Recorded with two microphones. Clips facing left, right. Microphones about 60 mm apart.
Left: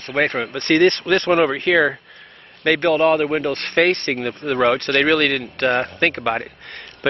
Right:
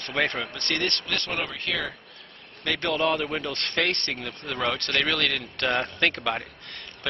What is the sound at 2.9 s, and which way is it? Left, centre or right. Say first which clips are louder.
A man's voice: left 6 dB; left.